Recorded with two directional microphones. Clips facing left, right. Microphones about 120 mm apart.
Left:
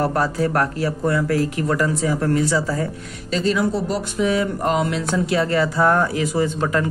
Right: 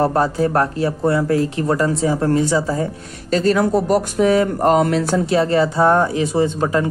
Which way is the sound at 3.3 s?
45° right (ahead or behind).